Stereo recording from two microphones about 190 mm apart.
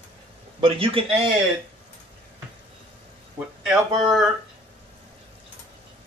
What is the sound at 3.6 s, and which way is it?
Speech, centre (ahead or behind).